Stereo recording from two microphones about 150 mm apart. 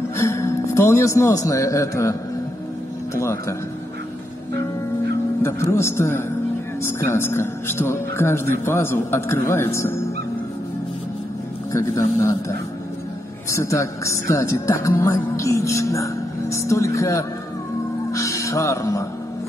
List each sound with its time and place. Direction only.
0.2 s a man's voice: 20° left (ahead or behind)
3.2 s speech: 20° left (ahead or behind)
5.4 s speech: 20° left (ahead or behind)
11.7 s speech: 20° left (ahead or behind)
18.1 s music: 20° left (ahead or behind)